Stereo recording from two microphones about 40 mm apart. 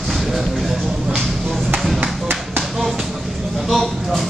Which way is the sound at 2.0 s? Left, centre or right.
Right.